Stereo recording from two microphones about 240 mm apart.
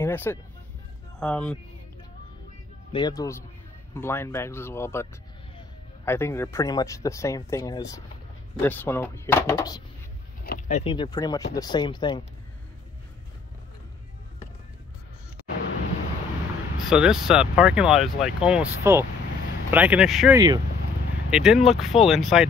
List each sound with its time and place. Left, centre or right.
0.0 s speech: centre
2.9 s speech: centre
10.4 s a sound: left
10.8 s speech: left
16.9 s speech: centre
20.3 s speech: centre
21.3 s speech: centre